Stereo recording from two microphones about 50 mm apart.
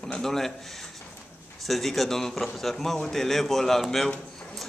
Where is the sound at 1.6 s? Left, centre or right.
Centre.